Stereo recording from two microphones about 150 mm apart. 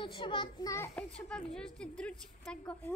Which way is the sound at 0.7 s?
15° left (ahead or behind).